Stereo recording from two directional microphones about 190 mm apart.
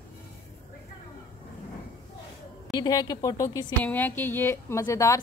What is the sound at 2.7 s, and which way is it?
A woman's voice, 20° left (ahead or behind).